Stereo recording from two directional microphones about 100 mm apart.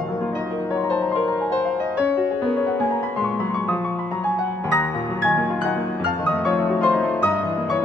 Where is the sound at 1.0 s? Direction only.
15° left (ahead or behind).